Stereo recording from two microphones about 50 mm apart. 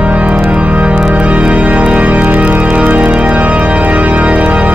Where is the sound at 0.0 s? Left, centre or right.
Right.